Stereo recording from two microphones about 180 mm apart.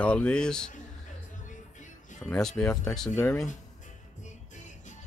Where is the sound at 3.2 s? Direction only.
15° left (ahead or behind).